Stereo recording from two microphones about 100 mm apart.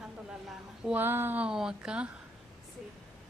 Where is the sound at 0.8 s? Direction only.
20° right (ahead or behind).